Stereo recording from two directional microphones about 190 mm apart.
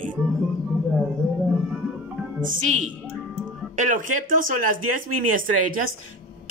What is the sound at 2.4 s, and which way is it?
Speech, 45° right (ahead or behind).